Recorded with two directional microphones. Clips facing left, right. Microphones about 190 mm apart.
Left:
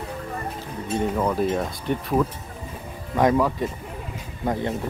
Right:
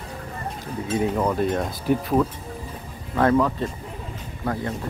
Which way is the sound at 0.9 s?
Centre (ahead or behind).